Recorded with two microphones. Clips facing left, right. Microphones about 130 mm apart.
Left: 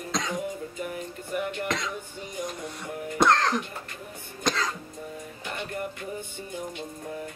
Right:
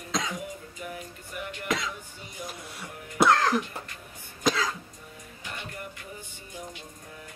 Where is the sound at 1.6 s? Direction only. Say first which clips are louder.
Left 1 dB; centre (ahead or behind).